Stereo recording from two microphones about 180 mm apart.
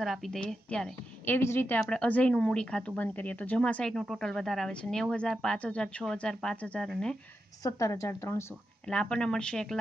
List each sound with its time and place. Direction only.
0.0 s speech: centre (ahead or behind)
7.6 s a woman's voice: 20° left (ahead or behind)
8.8 s speech: 5° left (ahead or behind)